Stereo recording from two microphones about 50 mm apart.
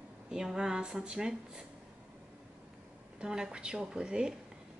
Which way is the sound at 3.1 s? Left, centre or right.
Centre.